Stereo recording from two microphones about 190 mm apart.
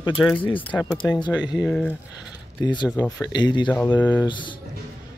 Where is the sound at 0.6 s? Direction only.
5° left (ahead or behind).